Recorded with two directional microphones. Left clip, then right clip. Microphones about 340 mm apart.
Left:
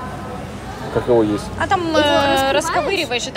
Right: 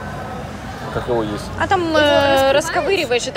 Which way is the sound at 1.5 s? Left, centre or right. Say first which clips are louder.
Right 2 dB; centre.